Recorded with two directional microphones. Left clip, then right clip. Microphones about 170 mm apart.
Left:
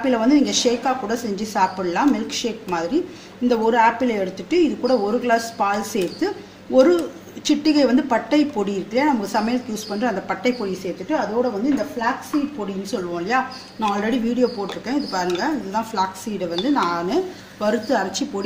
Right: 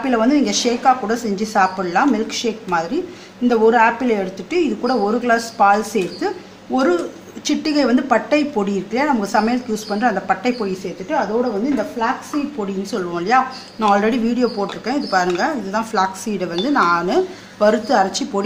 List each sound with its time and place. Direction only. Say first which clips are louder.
0.0 s speech: right 1 dB; 40° right (ahead or behind)
12.9 s speech: right 5 dB; 50° right (ahead or behind)